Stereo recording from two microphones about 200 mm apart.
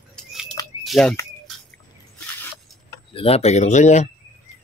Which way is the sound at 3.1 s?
30° left (ahead or behind).